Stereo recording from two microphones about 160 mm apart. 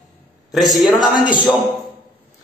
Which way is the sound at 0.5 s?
Centre (ahead or behind).